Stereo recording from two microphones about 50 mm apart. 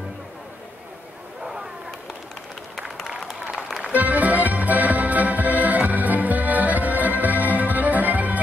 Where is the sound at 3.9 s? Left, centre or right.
Right.